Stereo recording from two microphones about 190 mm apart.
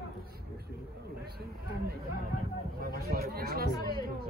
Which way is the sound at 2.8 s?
55° right (ahead or behind).